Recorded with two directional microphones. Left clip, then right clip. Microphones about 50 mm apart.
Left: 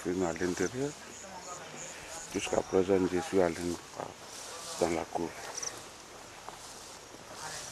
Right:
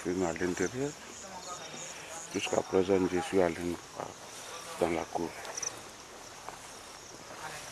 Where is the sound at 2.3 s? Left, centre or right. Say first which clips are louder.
Even; centre.